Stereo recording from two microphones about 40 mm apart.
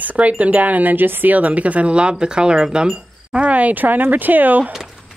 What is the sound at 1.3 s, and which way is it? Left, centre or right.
Speech, right.